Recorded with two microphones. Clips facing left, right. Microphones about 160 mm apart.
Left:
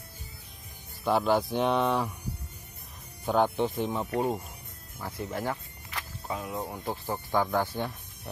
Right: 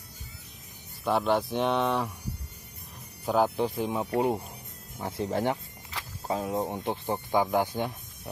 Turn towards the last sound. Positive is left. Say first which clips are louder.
# right 2 dB
turn(degrees=-15)  # may be behind; listen again after turning